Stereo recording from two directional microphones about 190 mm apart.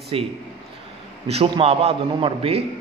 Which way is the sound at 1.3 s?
30° right (ahead or behind).